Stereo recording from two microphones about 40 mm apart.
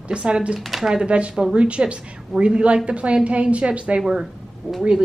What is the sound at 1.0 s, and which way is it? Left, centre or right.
A woman's voice, right.